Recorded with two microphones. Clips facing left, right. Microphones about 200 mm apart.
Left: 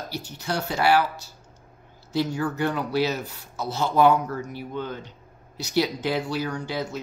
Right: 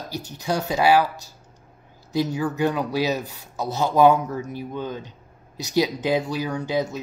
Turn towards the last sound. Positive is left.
turn(degrees=-20)  # may be behind; listen again after turning